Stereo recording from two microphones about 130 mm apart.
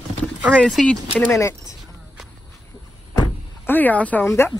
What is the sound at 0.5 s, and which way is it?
Speech, 5° left (ahead or behind).